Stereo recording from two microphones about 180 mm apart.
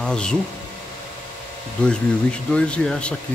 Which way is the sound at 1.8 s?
5° left (ahead or behind).